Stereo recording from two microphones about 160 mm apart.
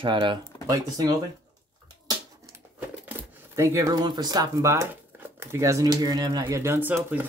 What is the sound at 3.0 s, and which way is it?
Speech, 10° right (ahead or behind).